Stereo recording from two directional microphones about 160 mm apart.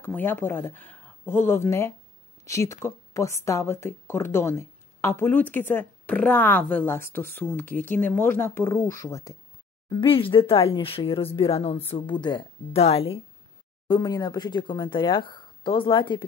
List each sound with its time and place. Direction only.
0.0 s a woman's voice: 10° left (ahead or behind)
9.8 s speech: 30° left (ahead or behind)
13.8 s speech: 25° left (ahead or behind)